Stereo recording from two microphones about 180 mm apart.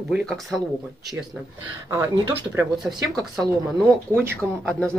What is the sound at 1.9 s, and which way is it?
Speech, 15° right (ahead or behind).